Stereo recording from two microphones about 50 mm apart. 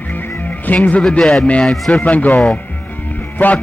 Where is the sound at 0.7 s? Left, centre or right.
Left.